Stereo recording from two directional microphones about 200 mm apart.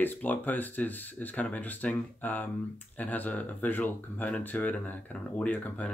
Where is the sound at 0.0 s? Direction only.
10° left (ahead or behind).